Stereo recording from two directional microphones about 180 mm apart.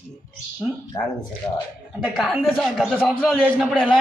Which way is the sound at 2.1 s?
Centre (ahead or behind).